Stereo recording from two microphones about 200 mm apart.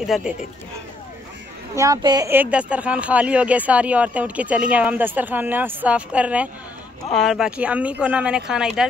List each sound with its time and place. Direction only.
0.0 s speech: centre (ahead or behind)
1.8 s speech: 20° right (ahead or behind); by 8.8 s 5° right (ahead or behind)